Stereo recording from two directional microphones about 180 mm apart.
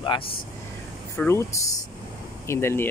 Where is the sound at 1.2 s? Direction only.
15° left (ahead or behind).